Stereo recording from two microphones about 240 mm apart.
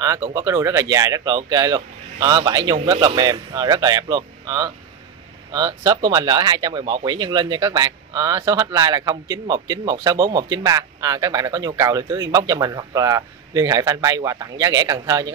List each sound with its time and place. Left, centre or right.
0.0 s speech: centre